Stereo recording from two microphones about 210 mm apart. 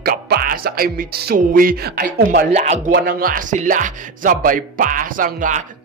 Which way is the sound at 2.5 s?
35° right (ahead or behind).